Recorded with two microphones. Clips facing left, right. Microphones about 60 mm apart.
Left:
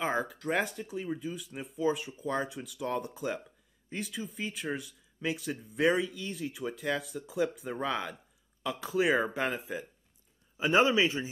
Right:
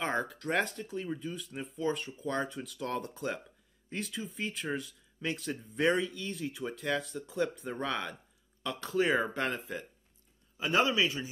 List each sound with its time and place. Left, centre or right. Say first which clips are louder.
0.0 s speech: left 1 dB; centre
10.6 s speech: left 3 dB; left